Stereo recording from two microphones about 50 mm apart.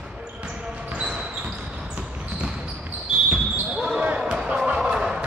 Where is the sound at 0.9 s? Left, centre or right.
Centre.